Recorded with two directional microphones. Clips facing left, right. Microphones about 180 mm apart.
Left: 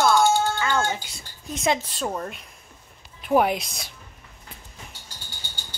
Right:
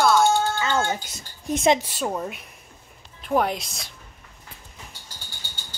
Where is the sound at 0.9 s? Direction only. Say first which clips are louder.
Right 1 dB; 45° right (ahead or behind).